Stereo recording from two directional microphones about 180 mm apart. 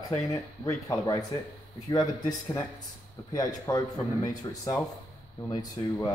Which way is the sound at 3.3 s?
20° left (ahead or behind).